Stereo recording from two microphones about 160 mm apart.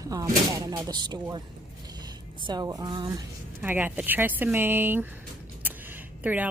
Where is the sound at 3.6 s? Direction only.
10° right (ahead or behind).